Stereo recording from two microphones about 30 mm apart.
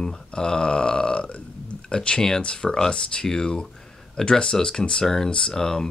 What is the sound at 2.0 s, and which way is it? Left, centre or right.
Speech, left.